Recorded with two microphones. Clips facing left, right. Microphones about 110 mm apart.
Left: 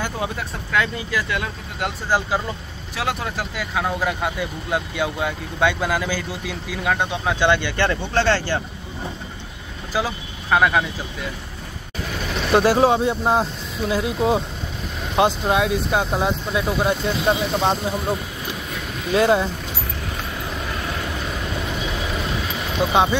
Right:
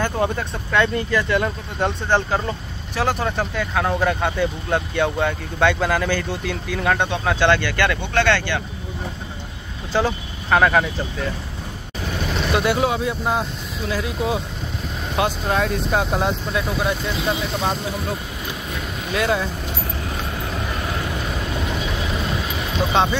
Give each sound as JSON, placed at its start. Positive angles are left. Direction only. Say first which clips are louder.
{"t": 0.0, "sound": "speech", "louder": "right 4 dB", "side_deg": 5}
{"t": 8.1, "sound": "speech", "louder": "even", "side_deg": 35}
{"t": 9.9, "sound": "speech", "louder": "right 3 dB", "side_deg": 10}
{"t": 12.5, "sound": "speech", "louder": "left 5 dB", "side_deg": 35}
{"t": 15.5, "sound": "speech", "louder": "left 1 dB", "side_deg": 5}
{"t": 16.5, "sound": "speech", "louder": "left 4 dB", "side_deg": 20}
{"t": 17.3, "sound": "speech", "louder": "left 4 dB", "side_deg": 30}
{"t": 19.1, "sound": "speech", "louder": "left 4 dB", "side_deg": 25}